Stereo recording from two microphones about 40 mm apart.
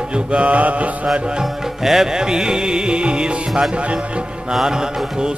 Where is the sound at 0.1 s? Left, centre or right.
Right.